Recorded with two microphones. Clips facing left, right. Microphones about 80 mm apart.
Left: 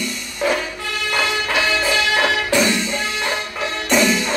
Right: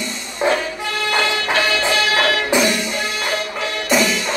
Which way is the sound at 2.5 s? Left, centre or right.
Centre.